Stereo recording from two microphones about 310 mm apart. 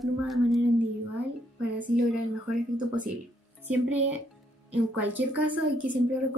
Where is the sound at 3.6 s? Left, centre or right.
Centre.